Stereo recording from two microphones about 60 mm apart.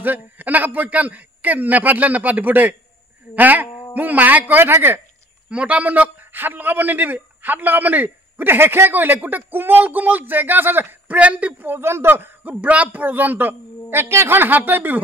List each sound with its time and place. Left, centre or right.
0.0 s a man's voice: right
5.5 s a man's voice: right
11.1 s a man's voice: right
12.5 s a man's voice: right